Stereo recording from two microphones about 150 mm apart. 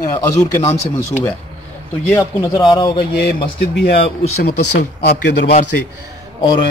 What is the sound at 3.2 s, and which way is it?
Speech, 90° left.